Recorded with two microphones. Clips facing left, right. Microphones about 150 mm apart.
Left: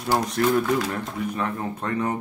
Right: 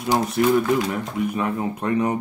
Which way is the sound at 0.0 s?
10° right (ahead or behind).